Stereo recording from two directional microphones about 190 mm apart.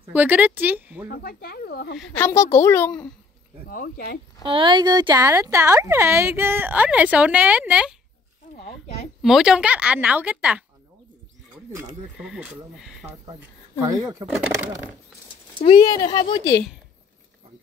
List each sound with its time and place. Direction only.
0.1 s speech: 10° right (ahead or behind)
1.0 s speech: 55° left (ahead or behind)
2.1 s a woman's voice: 15° left (ahead or behind)
3.6 s speech: 50° left (ahead or behind)
4.4 s speech: 25° right (ahead or behind); by 7.9 s 5° right (ahead or behind)
9.2 s speech: centre (ahead or behind)
12.2 s speech: 5° right (ahead or behind)
13.7 s speech: 15° right (ahead or behind)
15.6 s speech: 25° left (ahead or behind)